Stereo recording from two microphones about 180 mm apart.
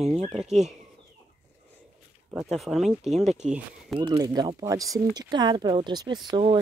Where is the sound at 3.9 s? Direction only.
25° right (ahead or behind).